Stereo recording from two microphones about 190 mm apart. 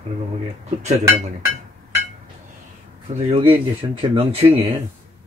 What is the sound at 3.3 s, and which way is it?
A man's voice, 30° right (ahead or behind).